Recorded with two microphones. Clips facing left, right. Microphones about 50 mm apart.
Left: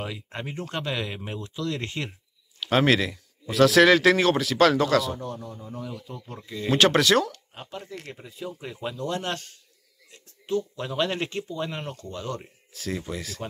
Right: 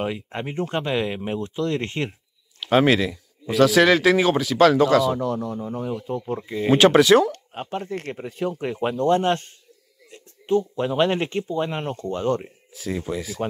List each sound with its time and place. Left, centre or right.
0.3 s speech: right
1.4 s speech: right
2.6 s speech: centre
5.3 s speech: right
5.6 s speech: right
5.9 s speech: right
7.3 s speech: right
9.2 s speech: right
12.7 s speech: centre